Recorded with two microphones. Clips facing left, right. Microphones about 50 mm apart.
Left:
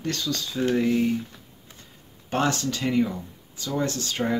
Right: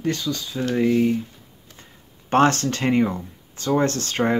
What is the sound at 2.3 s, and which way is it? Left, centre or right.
Speech, right.